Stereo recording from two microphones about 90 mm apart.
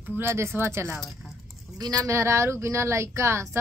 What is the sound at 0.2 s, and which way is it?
Speech, 30° right (ahead or behind).